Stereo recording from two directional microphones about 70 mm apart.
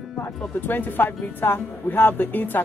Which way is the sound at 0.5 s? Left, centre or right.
Left.